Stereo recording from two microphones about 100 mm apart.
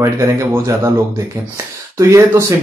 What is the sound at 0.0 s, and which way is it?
Speech, 30° right (ahead or behind).